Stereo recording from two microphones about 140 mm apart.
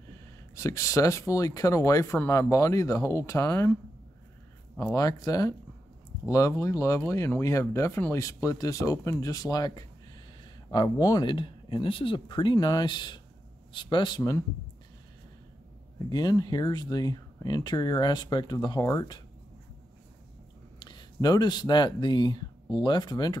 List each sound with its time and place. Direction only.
0.6 s speech: 20° left (ahead or behind)
4.7 s speech: 25° left (ahead or behind)
16.1 s speech: 30° left (ahead or behind)
20.8 s speech: 30° left (ahead or behind)